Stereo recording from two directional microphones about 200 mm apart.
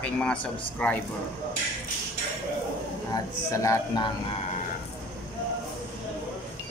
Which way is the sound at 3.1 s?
15° left (ahead or behind).